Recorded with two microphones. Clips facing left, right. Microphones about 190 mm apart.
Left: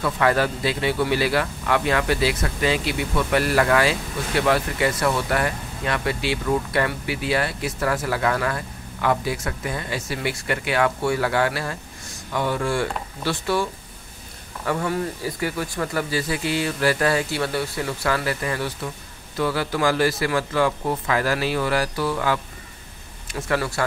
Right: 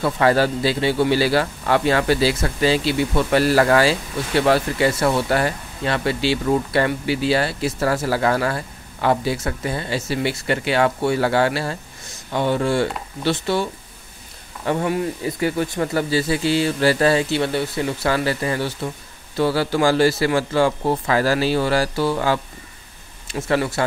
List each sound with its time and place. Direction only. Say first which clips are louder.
0.0 s speech: right 3 dB; 30° right (ahead or behind)
14.7 s speech: right 3 dB; 20° right (ahead or behind)